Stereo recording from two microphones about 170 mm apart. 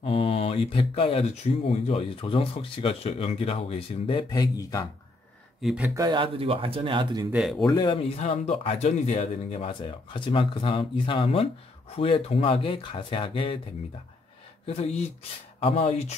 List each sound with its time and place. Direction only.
0.0 s speech: 35° left (ahead or behind)
5.6 s speech: centre (ahead or behind)
5.9 s speech: 25° right (ahead or behind)
7.3 s speech: centre (ahead or behind)
7.6 s speech: 25° left (ahead or behind)
14.7 s speech: 35° left (ahead or behind)